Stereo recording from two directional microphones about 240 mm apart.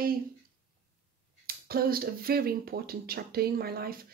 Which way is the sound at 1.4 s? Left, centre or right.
Right.